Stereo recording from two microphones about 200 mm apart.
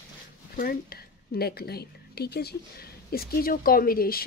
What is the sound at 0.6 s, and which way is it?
Speech, 50° left (ahead or behind).